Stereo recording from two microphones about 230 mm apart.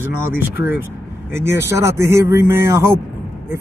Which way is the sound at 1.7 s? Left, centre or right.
Centre.